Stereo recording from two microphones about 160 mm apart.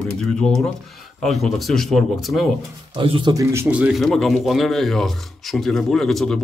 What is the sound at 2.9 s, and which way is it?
Speech, 35° right (ahead or behind).